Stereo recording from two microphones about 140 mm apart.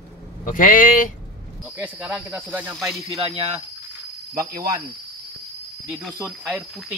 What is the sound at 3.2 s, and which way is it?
Speech, 45° right (ahead or behind).